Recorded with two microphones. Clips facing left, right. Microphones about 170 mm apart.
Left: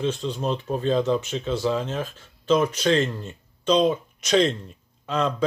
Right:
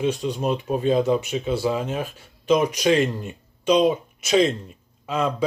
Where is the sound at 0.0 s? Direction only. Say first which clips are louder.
Right 2 dB; 10° right (ahead or behind).